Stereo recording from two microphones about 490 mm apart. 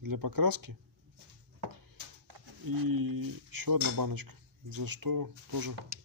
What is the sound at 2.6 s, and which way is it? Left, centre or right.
Speech, right.